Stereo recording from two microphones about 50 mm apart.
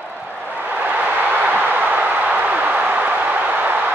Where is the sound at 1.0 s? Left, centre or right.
Right.